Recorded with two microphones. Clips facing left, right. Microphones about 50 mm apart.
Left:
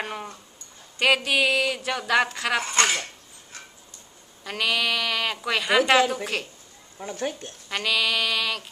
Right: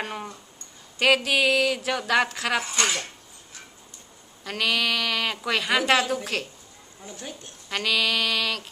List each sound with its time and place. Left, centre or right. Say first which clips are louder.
0.0 s a sound: even; centre
0.9 s speech: even; centre
2.7 s cutlery: left 3 dB; left
4.5 s speech: even; centre
7.0 s speech: left 9 dB; left
7.7 s speech: even; centre